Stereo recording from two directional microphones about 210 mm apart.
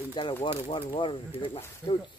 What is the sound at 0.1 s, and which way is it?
Speech, 20° left (ahead or behind).